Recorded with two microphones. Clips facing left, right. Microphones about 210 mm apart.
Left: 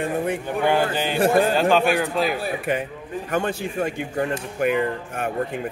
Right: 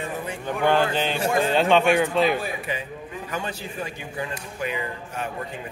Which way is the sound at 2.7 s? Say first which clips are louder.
Left 6 dB; 55° left (ahead or behind).